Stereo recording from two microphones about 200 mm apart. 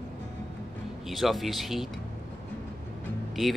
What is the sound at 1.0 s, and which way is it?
Speech, centre (ahead or behind).